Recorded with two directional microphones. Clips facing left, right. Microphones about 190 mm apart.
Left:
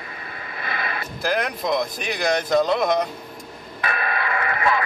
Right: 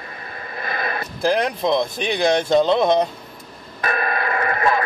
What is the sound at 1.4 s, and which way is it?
Speech, 30° right (ahead or behind).